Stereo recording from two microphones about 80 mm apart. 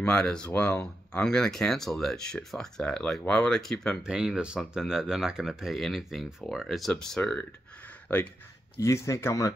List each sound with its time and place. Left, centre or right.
0.0 s speech: centre
4.0 s speech: centre
6.9 s speech: centre
8.7 s speech: left